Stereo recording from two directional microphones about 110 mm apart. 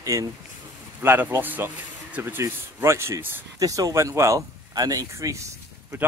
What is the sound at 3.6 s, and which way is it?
Speech, 30° right (ahead or behind).